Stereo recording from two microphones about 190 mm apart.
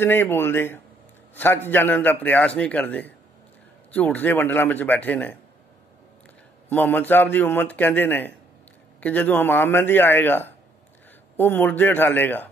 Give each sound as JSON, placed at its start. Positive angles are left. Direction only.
{"t": 0.0, "sound": "a man's voice", "side_deg": 10}
{"t": 6.7, "sound": "a man's voice", "side_deg": 10}